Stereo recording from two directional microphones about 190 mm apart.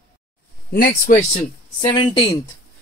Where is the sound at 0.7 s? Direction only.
50° left (ahead or behind).